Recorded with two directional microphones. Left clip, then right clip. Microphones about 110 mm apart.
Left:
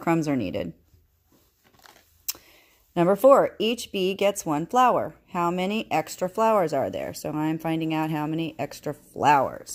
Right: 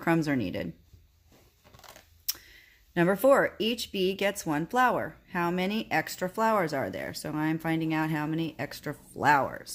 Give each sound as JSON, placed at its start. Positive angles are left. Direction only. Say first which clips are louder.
{"t": 0.0, "sound": "a woman's voice", "louder": "left 3 dB", "side_deg": 30}
{"t": 2.2, "sound": "speech", "louder": "left 1 dB", "side_deg": 35}